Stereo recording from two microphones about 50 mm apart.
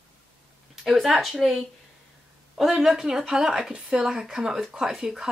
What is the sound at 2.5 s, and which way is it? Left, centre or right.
A woman's voice, centre.